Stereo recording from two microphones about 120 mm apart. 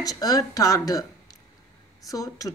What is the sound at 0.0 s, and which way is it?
A woman's voice, 30° left (ahead or behind).